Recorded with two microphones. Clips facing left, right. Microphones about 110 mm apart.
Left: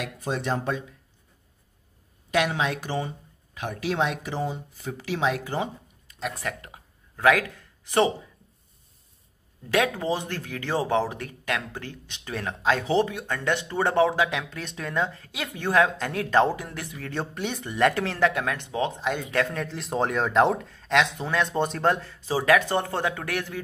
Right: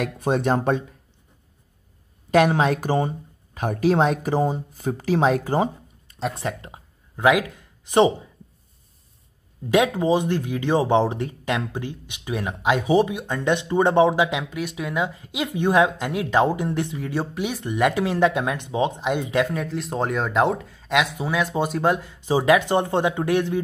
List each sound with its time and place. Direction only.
0.0 s speech: 50° right (ahead or behind)
2.3 s speech: 45° right (ahead or behind)
6.1 s speech: 30° right (ahead or behind)
9.7 s speech: 15° right (ahead or behind)
17.1 s speech: 5° right (ahead or behind)